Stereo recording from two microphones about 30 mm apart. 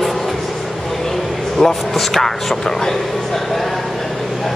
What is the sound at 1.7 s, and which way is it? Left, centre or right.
Speech, centre.